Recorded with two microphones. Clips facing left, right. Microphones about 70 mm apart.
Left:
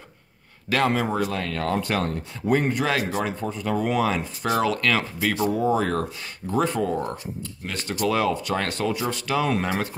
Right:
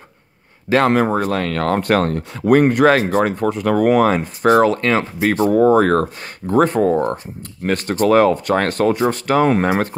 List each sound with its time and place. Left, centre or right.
0.8 s speech: right
1.3 s speech: right
3.0 s speech: right
3.3 s speech: right
5.5 s speech: right